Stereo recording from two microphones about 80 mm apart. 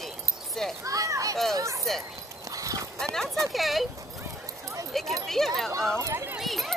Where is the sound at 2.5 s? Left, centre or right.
Right.